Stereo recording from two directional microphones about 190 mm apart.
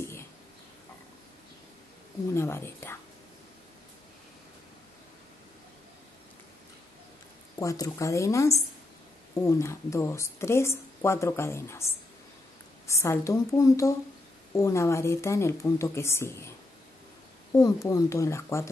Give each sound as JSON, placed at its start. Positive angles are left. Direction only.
{"t": 0.0, "sound": "a sound", "side_deg": 15}
{"t": 2.3, "sound": "a woman's voice", "side_deg": 15}
{"t": 7.5, "sound": "a woman's voice", "side_deg": 20}
{"t": 12.8, "sound": "a woman's voice", "side_deg": 15}